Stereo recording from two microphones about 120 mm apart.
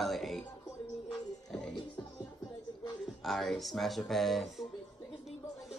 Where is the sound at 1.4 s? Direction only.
5° left (ahead or behind).